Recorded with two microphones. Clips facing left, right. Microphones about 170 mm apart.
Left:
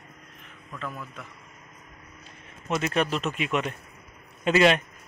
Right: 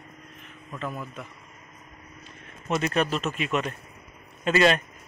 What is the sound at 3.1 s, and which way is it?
Speech, 5° right (ahead or behind).